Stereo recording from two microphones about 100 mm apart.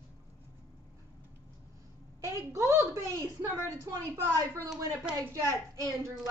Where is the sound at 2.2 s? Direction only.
30° right (ahead or behind).